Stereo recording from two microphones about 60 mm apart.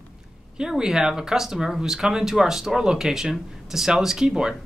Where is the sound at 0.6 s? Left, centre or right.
Centre.